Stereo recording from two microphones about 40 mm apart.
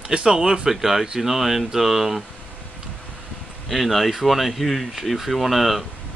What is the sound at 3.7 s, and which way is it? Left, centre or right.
Speech, centre.